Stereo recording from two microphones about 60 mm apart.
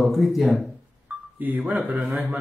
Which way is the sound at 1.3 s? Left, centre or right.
Right.